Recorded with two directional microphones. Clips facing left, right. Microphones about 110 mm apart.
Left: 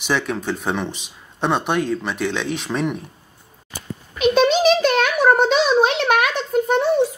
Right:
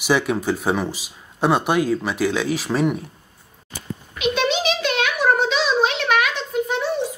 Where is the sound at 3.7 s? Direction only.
45° left (ahead or behind).